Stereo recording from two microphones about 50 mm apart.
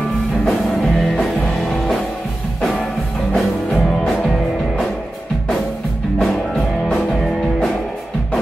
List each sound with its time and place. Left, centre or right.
0.5 s music: centre
3.3 s music: centre
6.1 s music: centre